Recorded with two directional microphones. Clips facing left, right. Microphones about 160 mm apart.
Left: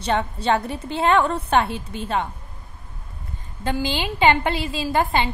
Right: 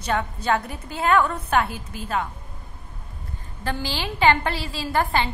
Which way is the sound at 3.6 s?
20° left (ahead or behind).